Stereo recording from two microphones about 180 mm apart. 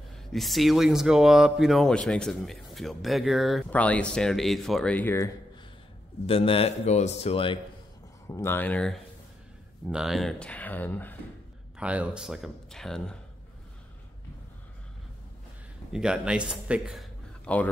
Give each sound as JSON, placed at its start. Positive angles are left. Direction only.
{"t": 0.3, "sound": "speech", "side_deg": 0}
{"t": 6.2, "sound": "speech", "side_deg": 30}
{"t": 8.3, "sound": "speech", "side_deg": 15}
{"t": 9.8, "sound": "speech", "side_deg": -5}
{"t": 11.8, "sound": "speech", "side_deg": -5}
{"t": 15.9, "sound": "a man's voice", "side_deg": -5}